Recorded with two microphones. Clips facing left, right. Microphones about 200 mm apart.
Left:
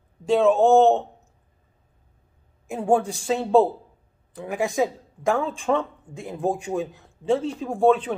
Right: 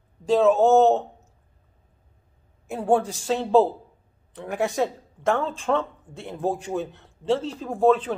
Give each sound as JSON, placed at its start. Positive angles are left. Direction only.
{"t": 0.4, "sound": "speech", "side_deg": -5}
{"t": 2.7, "sound": "speech", "side_deg": 10}